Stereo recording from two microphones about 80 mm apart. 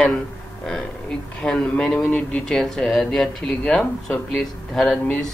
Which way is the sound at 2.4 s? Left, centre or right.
Centre.